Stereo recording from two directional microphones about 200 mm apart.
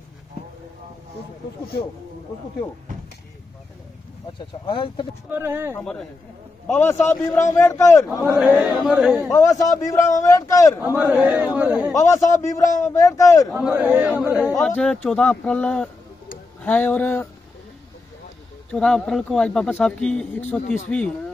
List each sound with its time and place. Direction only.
4.4 s speech: 25° left (ahead or behind)
5.3 s a man's voice: 10° right (ahead or behind)
5.7 s a man's voice: 5° left (ahead or behind)
8.2 s a man's voice: 10° right (ahead or behind)
9.3 s a man's voice: 15° left (ahead or behind)
10.8 s a man's voice: 10° right (ahead or behind)
11.9 s a man's voice: 15° left (ahead or behind)
13.5 s a man's voice: 5° right (ahead or behind)
14.6 s a man's voice: 5° left (ahead or behind)
18.7 s a man's voice: 5° left (ahead or behind)